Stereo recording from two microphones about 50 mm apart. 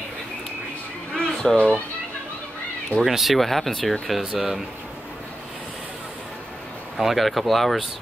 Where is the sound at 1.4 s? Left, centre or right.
Centre.